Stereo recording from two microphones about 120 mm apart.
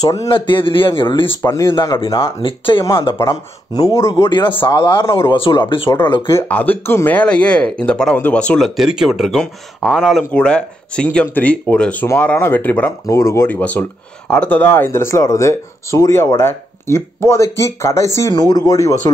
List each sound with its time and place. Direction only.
0.0 s speech: 25° left (ahead or behind)
0.3 s a man's voice: 45° left (ahead or behind)
1.2 s speech: 25° left (ahead or behind)
1.7 s speech: 40° left (ahead or behind)
2.4 s a man's voice: 45° left (ahead or behind); by 4.1 s 25° left (ahead or behind)
4.3 s speech: 40° left (ahead or behind)
5.0 s speech: 25° left (ahead or behind)
5.3 s a man's voice: 45° left (ahead or behind)
6.3 s speech: 15° left (ahead or behind)
8.6 s speech: 5° right (ahead or behind); by 12.9 s 15° left (ahead or behind)
13.0 s speech: 25° left (ahead or behind)